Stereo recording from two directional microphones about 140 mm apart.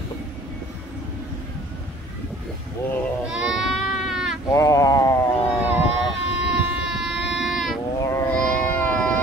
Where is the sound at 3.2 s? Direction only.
5° right (ahead or behind).